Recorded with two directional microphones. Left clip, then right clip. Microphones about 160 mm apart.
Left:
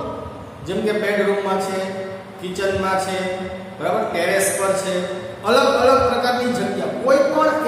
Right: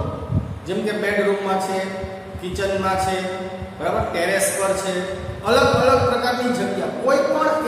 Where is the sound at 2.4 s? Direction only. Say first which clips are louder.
Left 1 dB; centre (ahead or behind).